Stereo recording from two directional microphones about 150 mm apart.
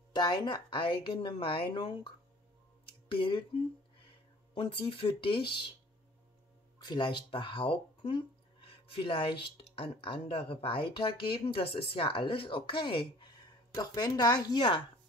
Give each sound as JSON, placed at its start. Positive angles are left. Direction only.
{"t": 0.1, "sound": "a woman's voice", "side_deg": 30}
{"t": 6.8, "sound": "a woman's voice", "side_deg": 30}